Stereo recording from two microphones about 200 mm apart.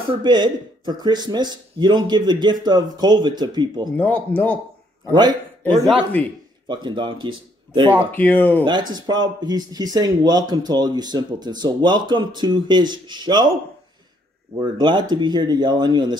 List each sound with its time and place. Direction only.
0.1 s speech: 20° right (ahead or behind)
3.9 s speech: 5° left (ahead or behind)
5.0 s a man's voice: 20° right (ahead or behind)
6.2 s speech: 5° left (ahead or behind)
6.7 s speech: 25° right (ahead or behind)
8.1 s speech: 10° left (ahead or behind)
8.9 s speech: 20° right (ahead or behind)
14.6 s speech: 20° right (ahead or behind)